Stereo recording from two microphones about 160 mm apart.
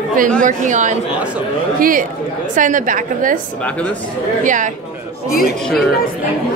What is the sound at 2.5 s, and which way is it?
Speech, 55° right (ahead or behind).